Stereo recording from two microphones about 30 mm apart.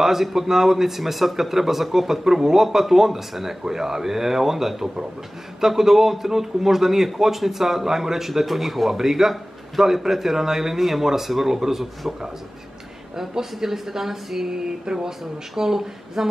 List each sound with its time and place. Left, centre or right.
0.0 s speech: centre
13.1 s speech: centre
14.5 s a sound: right
15.5 s speech: centre